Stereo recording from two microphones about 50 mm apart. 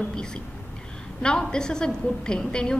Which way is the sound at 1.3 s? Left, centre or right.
Centre.